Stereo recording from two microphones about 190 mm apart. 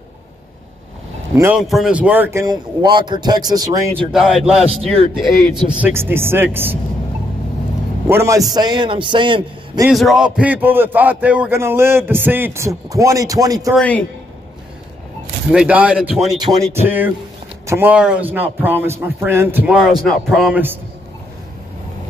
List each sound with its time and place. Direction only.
1.3 s a man's voice: 10° right (ahead or behind)
4.1 s speech: centre (ahead or behind)
5.7 s a man's voice: 10° right (ahead or behind)
8.1 s a man's voice: 15° right (ahead or behind)
9.8 s a man's voice: centre (ahead or behind); by 13.7 s 20° right (ahead or behind)
13.7 s a man's voice: 5° left (ahead or behind)
15.5 s a man's voice: 5° right (ahead or behind)